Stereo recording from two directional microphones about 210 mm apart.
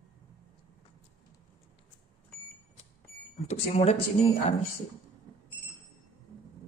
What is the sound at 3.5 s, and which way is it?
Speech, 30° left (ahead or behind).